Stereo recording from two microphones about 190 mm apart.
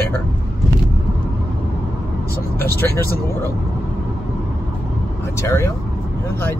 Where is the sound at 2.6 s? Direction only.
15° left (ahead or behind).